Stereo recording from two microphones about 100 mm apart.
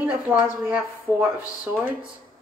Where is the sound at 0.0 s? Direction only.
15° right (ahead or behind).